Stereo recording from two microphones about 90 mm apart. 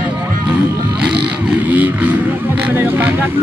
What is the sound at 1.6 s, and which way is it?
Vehicle, 15° right (ahead or behind).